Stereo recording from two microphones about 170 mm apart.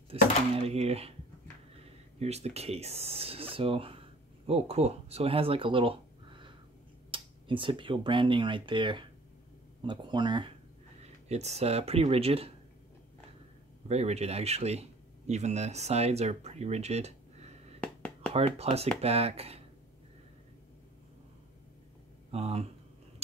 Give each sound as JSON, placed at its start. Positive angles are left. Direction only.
{"t": 0.1, "sound": "speech", "side_deg": -35}
{"t": 2.1, "sound": "speech", "side_deg": -40}
{"t": 11.0, "sound": "speech", "side_deg": -40}
{"t": 13.8, "sound": "speech", "side_deg": -40}
{"t": 17.7, "sound": "a sound", "side_deg": 10}
{"t": 18.3, "sound": "speech", "side_deg": -35}
{"t": 22.3, "sound": "speech", "side_deg": -35}